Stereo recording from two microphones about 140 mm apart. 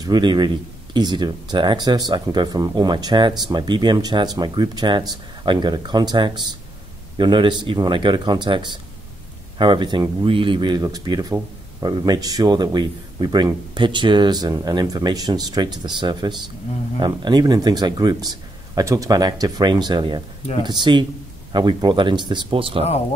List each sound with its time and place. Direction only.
0.0 s speech: 30° right (ahead or behind)